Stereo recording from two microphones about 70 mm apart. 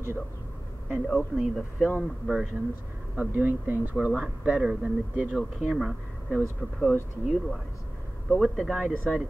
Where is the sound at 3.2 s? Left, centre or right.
Right.